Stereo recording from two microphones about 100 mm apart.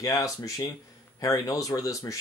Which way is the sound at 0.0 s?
35° left (ahead or behind).